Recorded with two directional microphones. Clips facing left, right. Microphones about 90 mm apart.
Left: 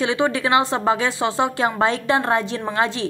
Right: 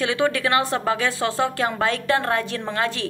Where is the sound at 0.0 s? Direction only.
25° left (ahead or behind).